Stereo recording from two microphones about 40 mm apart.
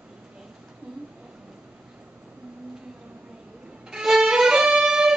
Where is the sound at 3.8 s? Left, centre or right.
Centre.